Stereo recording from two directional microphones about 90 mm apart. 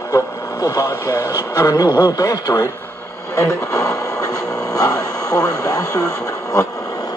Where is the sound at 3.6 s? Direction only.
40° left (ahead or behind).